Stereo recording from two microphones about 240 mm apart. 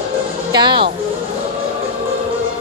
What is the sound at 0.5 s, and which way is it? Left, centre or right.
Speech, centre.